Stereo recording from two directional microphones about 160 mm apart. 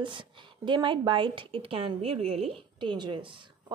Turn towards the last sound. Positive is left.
turn(degrees=-30)  # may be behind; listen again after turning